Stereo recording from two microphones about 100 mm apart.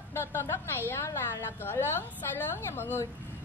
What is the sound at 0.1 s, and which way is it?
A woman's voice, 25° left (ahead or behind).